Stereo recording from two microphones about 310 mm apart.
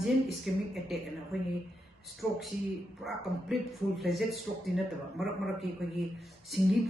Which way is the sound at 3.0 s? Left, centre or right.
Centre.